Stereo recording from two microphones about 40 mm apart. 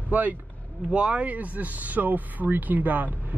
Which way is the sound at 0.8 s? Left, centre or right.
Right.